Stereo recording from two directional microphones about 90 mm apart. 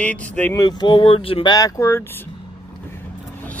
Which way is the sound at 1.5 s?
40° left (ahead or behind).